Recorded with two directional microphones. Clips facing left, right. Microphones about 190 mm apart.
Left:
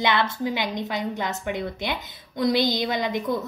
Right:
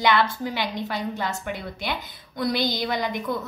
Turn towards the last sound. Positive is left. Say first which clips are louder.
# left 2 dB
turn(degrees=20)  # may be behind; listen again after turning